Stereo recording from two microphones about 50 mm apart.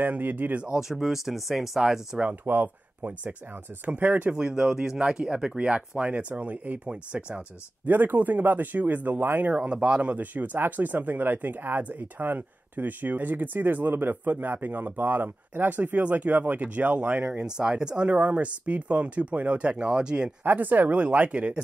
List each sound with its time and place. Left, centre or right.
0.0 s speech: right
0.7 s speech: centre
2.4 s speech: right
4.3 s speech: centre
7.8 s speech: right
9.6 s speech: right
10.1 s speech: right
17.2 s speech: centre
20.4 s speech: right